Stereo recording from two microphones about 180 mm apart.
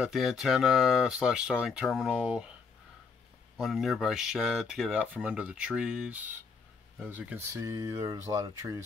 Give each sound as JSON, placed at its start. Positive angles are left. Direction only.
{"t": 0.0, "sound": "speech", "side_deg": 0}
{"t": 3.5, "sound": "speech", "side_deg": 0}